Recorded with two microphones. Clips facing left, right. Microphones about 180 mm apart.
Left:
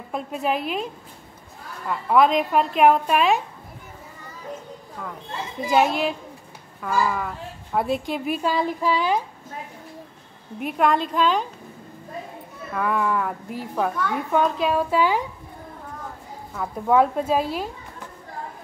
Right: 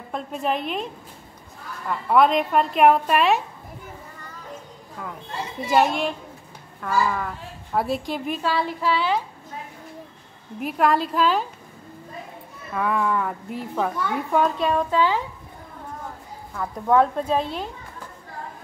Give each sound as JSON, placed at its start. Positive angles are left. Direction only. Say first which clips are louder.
{"t": 0.1, "sound": "a woman's voice", "louder": "left 1 dB", "side_deg": 5}
{"t": 1.9, "sound": "a woman's voice", "louder": "even", "side_deg": 0}
{"t": 5.7, "sound": "a woman's voice", "louder": "even", "side_deg": 0}
{"t": 8.4, "sound": "speech", "louder": "left 1 dB", "side_deg": 15}
{"t": 10.6, "sound": "a woman's voice", "louder": "even", "side_deg": 0}
{"t": 12.7, "sound": "a woman's voice", "louder": "even", "side_deg": 0}
{"t": 16.5, "sound": "speech", "louder": "even", "side_deg": 5}